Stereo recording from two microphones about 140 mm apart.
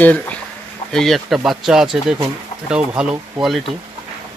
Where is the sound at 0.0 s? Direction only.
10° left (ahead or behind); by 2.8 s 5° right (ahead or behind).